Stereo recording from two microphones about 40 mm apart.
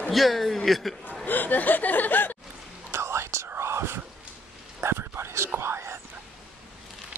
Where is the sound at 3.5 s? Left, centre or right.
Right.